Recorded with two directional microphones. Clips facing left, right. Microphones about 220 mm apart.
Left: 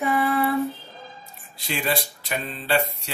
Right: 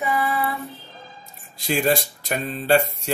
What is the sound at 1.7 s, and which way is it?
Speech, 45° right (ahead or behind).